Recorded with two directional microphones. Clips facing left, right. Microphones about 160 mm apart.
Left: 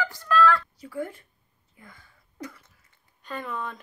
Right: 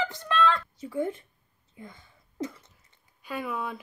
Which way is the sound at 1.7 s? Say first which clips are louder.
Right 6 dB; 25° right (ahead or behind).